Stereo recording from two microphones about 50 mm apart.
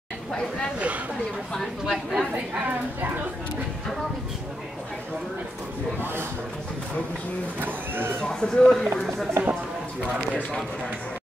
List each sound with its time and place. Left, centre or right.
0.7 s speech: right
1.6 s speech: centre
7.6 s speech: right
8.2 s speech: centre
9.4 s speech: right